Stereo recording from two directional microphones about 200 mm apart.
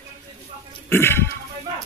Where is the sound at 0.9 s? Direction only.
10° left (ahead or behind).